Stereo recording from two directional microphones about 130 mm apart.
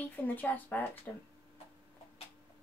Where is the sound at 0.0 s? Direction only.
15° left (ahead or behind).